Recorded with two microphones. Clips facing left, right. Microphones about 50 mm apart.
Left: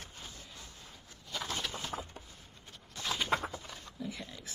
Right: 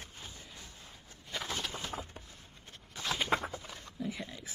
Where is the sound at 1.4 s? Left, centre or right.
Centre.